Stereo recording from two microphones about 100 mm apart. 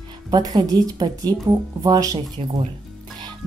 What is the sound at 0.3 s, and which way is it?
A woman's voice, 40° right (ahead or behind).